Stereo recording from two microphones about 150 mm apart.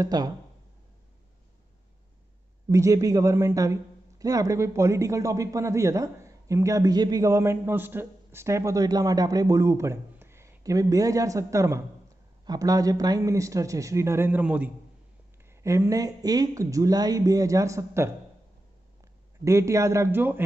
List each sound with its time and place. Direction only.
0.0 s a man's voice: 25° right (ahead or behind)
2.7 s a man's voice: 20° right (ahead or behind)
19.4 s a man's voice: 20° right (ahead or behind)